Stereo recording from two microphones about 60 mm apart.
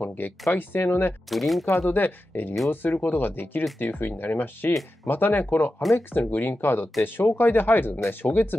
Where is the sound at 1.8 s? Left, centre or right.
Left.